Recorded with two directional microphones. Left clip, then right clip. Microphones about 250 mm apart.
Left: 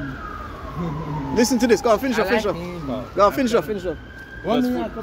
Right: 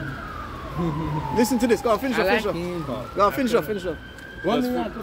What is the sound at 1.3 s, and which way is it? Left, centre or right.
Speech, left.